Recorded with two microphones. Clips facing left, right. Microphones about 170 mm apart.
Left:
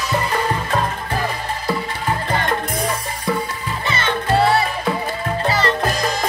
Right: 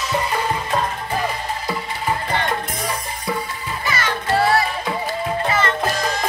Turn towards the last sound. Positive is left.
turn(degrees=35)  # may be behind; listen again after turning